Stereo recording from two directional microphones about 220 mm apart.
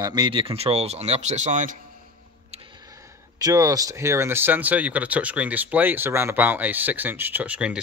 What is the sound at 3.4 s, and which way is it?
Speech, 15° right (ahead or behind).